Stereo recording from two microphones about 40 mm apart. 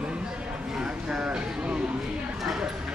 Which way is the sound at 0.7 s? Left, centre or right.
Centre.